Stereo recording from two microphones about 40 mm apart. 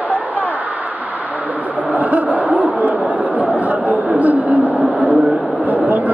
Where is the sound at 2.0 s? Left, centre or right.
Right.